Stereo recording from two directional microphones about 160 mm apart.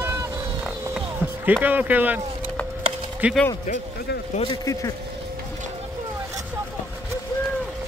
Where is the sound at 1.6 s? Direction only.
10° right (ahead or behind).